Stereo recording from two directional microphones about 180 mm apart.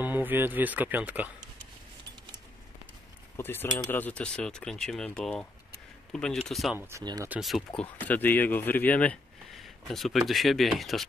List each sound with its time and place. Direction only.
0.0 s speech: 10° right (ahead or behind)
3.3 s speech: 15° left (ahead or behind)
6.8 s speech: 15° right (ahead or behind)
7.3 s speech: centre (ahead or behind)